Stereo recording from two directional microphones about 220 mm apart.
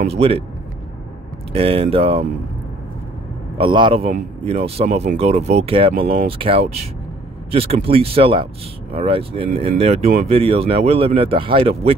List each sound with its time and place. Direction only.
0.1 s speech: 25° right (ahead or behind)
1.5 s speech: 25° right (ahead or behind)
3.5 s speech: 20° right (ahead or behind)
5.9 s speech: 45° right (ahead or behind)
6.2 s speech: 25° right (ahead or behind)